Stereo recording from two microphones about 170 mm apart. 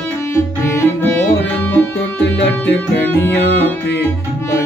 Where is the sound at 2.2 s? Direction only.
80° left.